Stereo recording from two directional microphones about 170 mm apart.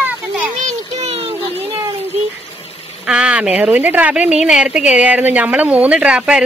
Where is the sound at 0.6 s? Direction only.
40° right (ahead or behind).